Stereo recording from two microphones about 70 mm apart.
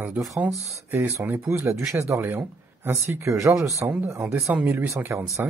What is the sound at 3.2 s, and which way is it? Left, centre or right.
Speech, right.